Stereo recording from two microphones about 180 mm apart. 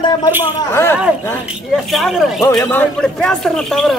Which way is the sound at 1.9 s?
Centre (ahead or behind).